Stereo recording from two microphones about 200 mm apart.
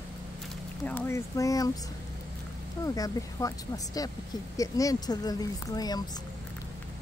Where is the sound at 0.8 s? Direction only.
10° left (ahead or behind).